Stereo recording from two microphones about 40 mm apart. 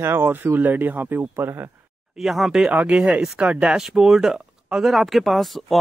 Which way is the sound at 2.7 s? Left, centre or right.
Right.